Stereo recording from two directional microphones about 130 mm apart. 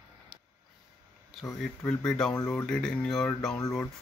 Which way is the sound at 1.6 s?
5° left (ahead or behind).